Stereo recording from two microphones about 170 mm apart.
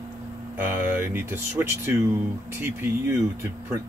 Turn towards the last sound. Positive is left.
turn(degrees=-15)  # may be behind; listen again after turning